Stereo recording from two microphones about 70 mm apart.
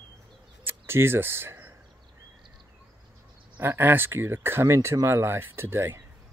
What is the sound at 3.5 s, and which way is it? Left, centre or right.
Speech, right.